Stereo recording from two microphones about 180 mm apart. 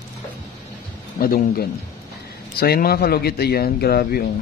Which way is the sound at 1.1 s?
55° left (ahead or behind).